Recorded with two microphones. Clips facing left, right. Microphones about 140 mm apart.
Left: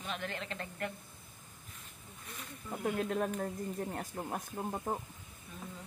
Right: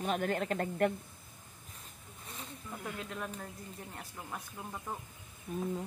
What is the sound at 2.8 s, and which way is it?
Speech, 50° left (ahead or behind).